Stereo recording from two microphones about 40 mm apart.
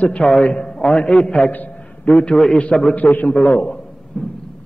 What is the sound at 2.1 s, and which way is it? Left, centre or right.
Speech, left.